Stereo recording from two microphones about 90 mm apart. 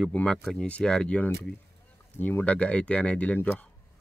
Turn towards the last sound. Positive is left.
turn(degrees=15)  # may be behind; listen again after turning